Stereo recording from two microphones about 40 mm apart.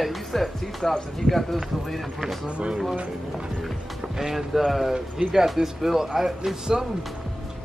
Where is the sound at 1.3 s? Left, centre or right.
Centre.